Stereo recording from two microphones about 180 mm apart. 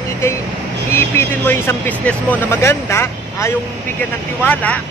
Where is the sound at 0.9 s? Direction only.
10° left (ahead or behind).